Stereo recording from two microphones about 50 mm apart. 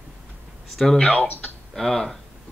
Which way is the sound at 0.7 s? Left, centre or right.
Centre.